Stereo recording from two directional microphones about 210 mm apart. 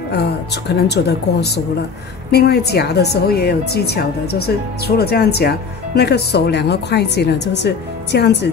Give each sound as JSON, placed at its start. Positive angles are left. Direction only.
{"t": 0.1, "sound": "speech", "side_deg": 50}